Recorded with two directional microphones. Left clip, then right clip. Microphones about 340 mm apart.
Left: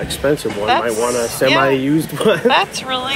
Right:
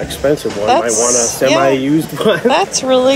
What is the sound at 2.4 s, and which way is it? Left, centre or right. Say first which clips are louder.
Speech: right 2 dB; centre.